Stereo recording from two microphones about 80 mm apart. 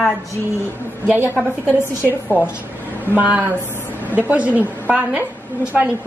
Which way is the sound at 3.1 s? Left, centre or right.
Right.